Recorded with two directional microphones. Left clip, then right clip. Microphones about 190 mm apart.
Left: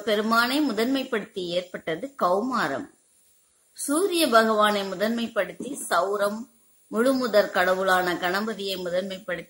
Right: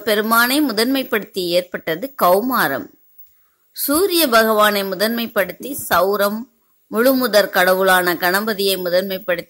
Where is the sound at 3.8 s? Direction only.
40° right (ahead or behind).